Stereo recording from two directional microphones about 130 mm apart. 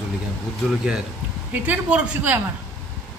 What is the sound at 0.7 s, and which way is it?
Speech, 5° right (ahead or behind).